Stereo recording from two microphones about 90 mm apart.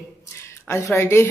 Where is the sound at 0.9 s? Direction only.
30° left (ahead or behind).